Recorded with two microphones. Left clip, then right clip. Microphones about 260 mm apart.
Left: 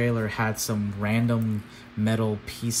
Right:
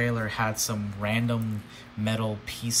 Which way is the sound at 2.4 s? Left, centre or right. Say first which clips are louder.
Right 1 dB; centre.